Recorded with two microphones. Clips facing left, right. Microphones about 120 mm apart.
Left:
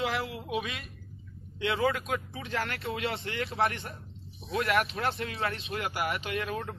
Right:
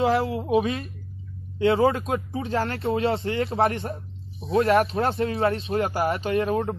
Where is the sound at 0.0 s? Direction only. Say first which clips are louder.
Right 10 dB; 30° right (ahead or behind).